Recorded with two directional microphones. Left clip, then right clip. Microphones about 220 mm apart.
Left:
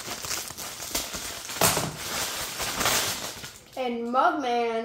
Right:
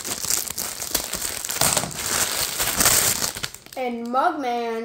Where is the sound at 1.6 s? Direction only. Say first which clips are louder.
Even; 55° right (ahead or behind).